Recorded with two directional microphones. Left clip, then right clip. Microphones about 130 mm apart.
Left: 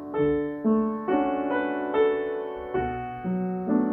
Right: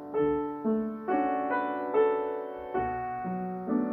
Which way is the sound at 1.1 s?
35° left (ahead or behind).